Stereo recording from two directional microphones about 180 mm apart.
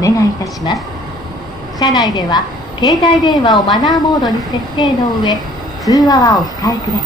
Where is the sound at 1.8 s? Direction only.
20° left (ahead or behind).